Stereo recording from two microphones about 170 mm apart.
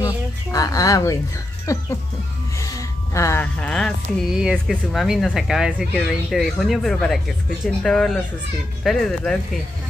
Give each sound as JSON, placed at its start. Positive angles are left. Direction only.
{"t": 0.0, "sound": "speech", "side_deg": 20}
{"t": 1.7, "sound": "chicken", "side_deg": 15}
{"t": 2.5, "sound": "speech", "side_deg": 20}